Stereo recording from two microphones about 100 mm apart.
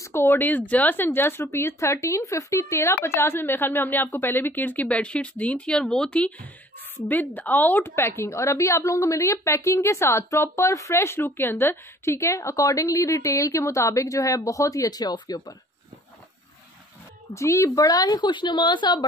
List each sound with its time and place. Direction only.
0.0 s a woman's voice: 25° left (ahead or behind); by 15.5 s 40° left (ahead or behind)
17.3 s a woman's voice: 30° left (ahead or behind); by 19.0 s 50° left (ahead or behind)